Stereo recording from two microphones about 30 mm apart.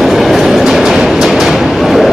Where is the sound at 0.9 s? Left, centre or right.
Centre.